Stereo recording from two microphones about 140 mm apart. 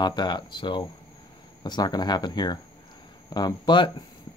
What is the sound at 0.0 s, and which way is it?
Speech, 30° left (ahead or behind).